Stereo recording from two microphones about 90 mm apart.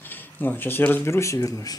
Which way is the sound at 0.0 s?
20° left (ahead or behind).